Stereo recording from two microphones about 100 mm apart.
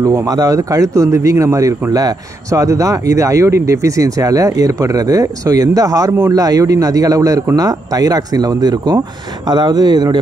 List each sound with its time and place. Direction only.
0.0 s a man's voice: 35° right (ahead or behind)